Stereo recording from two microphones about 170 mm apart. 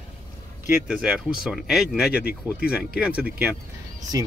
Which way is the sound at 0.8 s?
10° right (ahead or behind).